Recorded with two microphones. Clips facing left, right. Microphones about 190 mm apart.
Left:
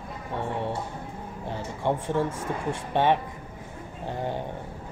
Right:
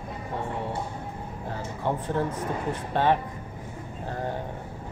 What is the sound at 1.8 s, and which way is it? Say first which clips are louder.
Speech: left 2 dB; 25° left (ahead or behind).